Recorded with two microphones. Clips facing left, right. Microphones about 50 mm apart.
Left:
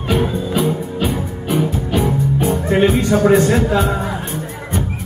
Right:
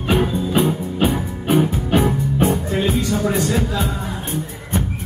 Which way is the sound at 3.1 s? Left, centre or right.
Left.